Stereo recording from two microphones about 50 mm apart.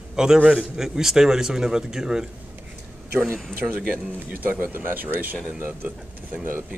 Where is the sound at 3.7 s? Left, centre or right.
Right.